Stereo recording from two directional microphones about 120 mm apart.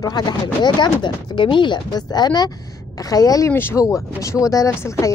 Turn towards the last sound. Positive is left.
turn(degrees=25)  # may be behind; listen again after turning